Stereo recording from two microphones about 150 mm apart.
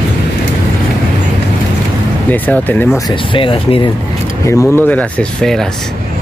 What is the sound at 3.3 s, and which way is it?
Speech, 35° left (ahead or behind).